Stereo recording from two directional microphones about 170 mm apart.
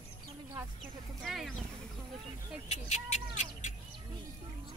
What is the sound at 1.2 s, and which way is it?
Speech, centre (ahead or behind).